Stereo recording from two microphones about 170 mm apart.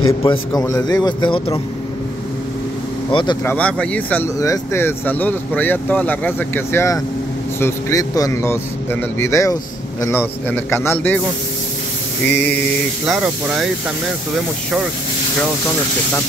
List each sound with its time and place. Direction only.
0.2 s speech: 25° left (ahead or behind)
3.1 s speech: 30° left (ahead or behind)
3.4 s speech: 10° left (ahead or behind)
12.3 s speech: 10° left (ahead or behind)
13.0 s speech: 5° right (ahead or behind)